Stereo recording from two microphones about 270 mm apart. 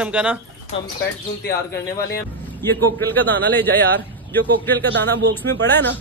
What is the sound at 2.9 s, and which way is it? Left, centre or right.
Speech, centre.